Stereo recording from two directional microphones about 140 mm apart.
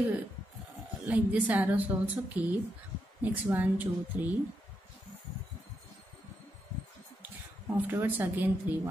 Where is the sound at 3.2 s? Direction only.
15° right (ahead or behind).